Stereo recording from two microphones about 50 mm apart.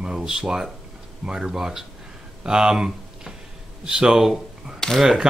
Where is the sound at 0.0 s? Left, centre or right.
Centre.